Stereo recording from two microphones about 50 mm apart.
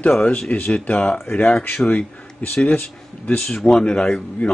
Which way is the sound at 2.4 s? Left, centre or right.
Left.